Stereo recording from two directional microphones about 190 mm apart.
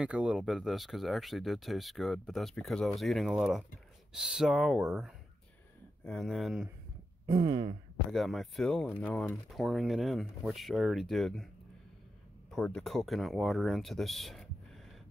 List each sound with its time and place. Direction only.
0.0 s speech: 5° right (ahead or behind)
7.2 s speech: 20° right (ahead or behind)
8.1 s speech: centre (ahead or behind)
12.4 s speech: 5° left (ahead or behind)